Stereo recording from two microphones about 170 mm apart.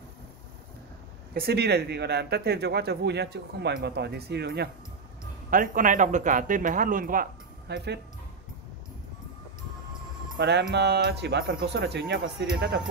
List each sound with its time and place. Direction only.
1.3 s a man's voice: 70° right (ahead or behind)
5.5 s speech: 55° right (ahead or behind); by 8.0 s 75° right (ahead or behind)
10.3 s speech: 80° right
12.5 s a man's voice: 70° right (ahead or behind)